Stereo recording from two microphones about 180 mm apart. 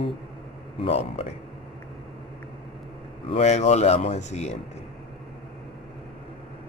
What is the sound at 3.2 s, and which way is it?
Speech, 35° left (ahead or behind).